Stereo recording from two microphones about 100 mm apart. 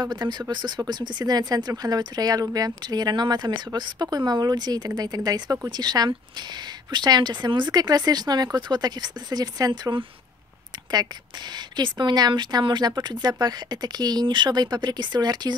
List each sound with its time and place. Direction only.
0.0 s speech: 45° right (ahead or behind)